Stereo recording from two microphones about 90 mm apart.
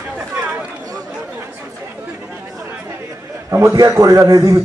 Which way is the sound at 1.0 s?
20° right (ahead or behind).